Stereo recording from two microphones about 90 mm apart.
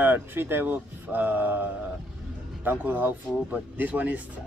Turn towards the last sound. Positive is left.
turn(degrees=-15)  # may be behind; listen again after turning